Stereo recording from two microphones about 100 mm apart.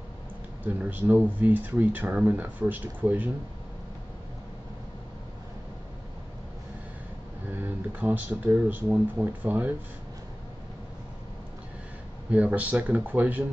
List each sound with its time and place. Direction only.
0.7 s speech: 15° right (ahead or behind)
7.5 s speech: 20° right (ahead or behind)
12.3 s speech: 15° right (ahead or behind)